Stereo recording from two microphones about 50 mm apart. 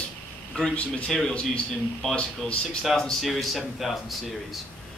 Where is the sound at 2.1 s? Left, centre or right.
Left.